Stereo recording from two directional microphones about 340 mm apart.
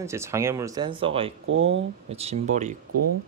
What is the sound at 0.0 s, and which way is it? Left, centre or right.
Speech, centre.